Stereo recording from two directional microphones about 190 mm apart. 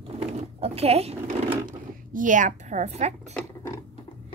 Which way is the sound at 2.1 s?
45° right (ahead or behind).